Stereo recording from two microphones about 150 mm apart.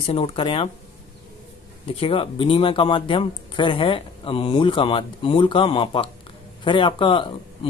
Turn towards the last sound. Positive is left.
turn(degrees=35)  # may be behind; listen again after turning